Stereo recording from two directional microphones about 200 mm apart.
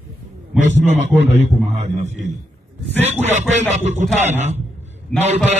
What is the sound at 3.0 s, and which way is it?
A man's voice, 35° right (ahead or behind).